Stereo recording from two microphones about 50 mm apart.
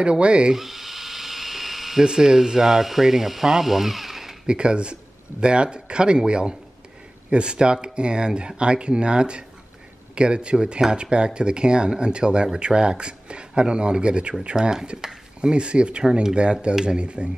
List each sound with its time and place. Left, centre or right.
0.0 s speech: right
0.6 s electric toothbrush: centre
4.5 s speech: centre